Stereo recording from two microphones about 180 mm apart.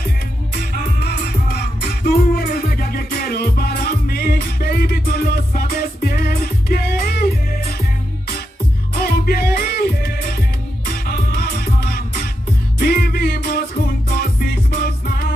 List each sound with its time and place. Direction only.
0.9 s music: 60° left (ahead or behind)
9.0 s music: 55° left (ahead or behind)